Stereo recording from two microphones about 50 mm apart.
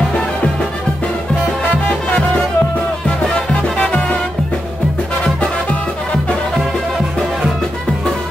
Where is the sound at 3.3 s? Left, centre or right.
Centre.